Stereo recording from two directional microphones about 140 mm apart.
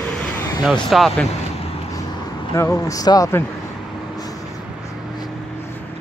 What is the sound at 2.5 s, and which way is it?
Speech, 20° left (ahead or behind).